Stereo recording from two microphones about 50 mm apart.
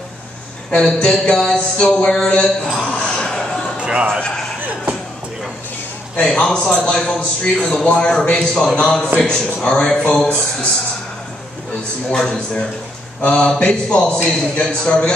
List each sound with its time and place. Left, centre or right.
0.7 s a woman's voice: centre
3.0 s a sound: centre
3.8 s speech: right
6.1 s a man's voice: centre
10.2 s a man's voice: left
12.1 s a man's voice: centre